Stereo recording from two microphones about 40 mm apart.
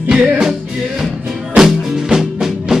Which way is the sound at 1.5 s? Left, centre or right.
Centre.